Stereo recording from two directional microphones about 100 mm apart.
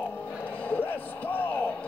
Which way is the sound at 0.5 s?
15° left (ahead or behind).